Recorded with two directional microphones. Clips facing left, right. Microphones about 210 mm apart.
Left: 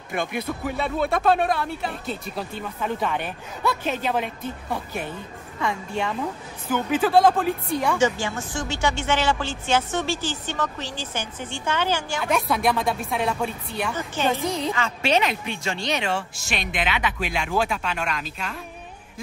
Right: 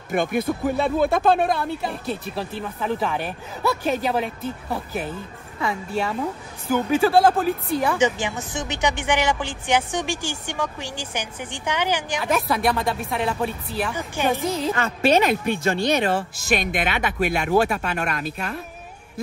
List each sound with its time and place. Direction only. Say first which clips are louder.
0.1 s speech: right 5 dB; 50° right (ahead or behind)
0.8 s speech: right 1 dB; centre (ahead or behind)
8.0 s speech: right 1 dB; 20° right (ahead or behind)
12.2 s speech: right 1 dB; centre (ahead or behind)
13.9 s speech: even; 10° right (ahead or behind)
14.7 s speech: right 6 dB; 50° right (ahead or behind)